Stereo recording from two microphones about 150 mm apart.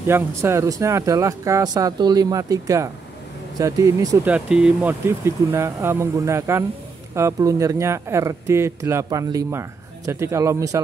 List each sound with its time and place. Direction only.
0.0 s speech: 15° right (ahead or behind)
4.2 s speech: 10° right (ahead or behind)